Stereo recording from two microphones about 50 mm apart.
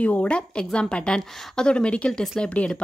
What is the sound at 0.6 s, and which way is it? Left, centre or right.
Speech, centre.